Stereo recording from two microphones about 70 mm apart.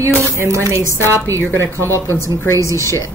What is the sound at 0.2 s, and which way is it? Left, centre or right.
Speech, right.